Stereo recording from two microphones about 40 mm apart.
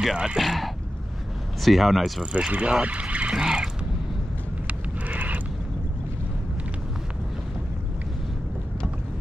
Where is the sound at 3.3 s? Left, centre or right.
Centre.